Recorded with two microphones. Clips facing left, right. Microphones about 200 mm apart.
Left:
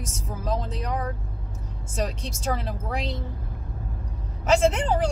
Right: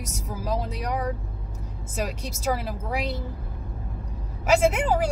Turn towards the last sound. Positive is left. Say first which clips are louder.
# even
turn(degrees=-5)  # may be behind; listen again after turning